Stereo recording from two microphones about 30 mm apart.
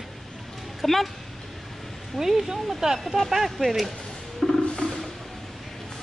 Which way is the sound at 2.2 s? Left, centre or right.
Centre.